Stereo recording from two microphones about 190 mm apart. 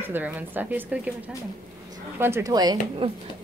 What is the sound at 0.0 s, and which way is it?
Speech, 10° right (ahead or behind).